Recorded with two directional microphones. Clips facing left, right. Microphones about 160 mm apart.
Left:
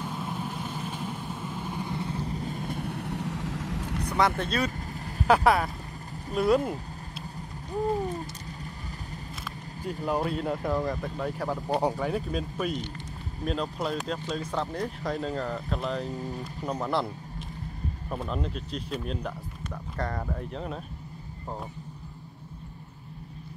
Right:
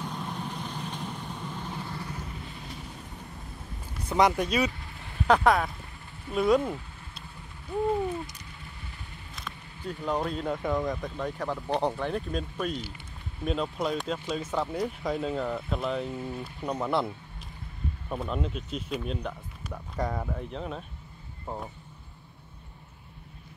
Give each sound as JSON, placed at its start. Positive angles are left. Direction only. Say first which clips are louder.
{"t": 0.0, "sound": "vehicle", "louder": "left 2 dB", "side_deg": 5}
{"t": 2.3, "sound": "vehicle", "louder": "left 8 dB", "side_deg": 45}
{"t": 4.4, "sound": "speech", "louder": "right 2 dB", "side_deg": -10}
{"t": 4.6, "sound": "vehicle", "louder": "left 2 dB", "side_deg": 40}
{"t": 5.2, "sound": "speech", "louder": "even", "side_deg": 5}
{"t": 7.3, "sound": "a sound", "louder": "right 1 dB", "side_deg": 40}
{"t": 10.0, "sound": "speech", "louder": "left 1 dB", "side_deg": 5}
{"t": 16.1, "sound": "speech", "louder": "even", "side_deg": 40}
{"t": 16.6, "sound": "speech", "louder": "right 1 dB", "side_deg": 0}